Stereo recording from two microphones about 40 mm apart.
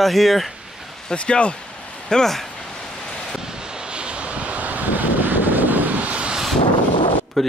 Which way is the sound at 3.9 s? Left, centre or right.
Right.